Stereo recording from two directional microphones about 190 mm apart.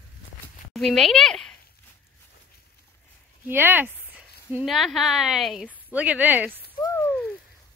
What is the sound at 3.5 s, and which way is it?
Speech, 10° right (ahead or behind).